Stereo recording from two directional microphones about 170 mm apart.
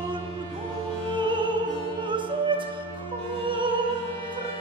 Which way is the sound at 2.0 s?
30° right (ahead or behind).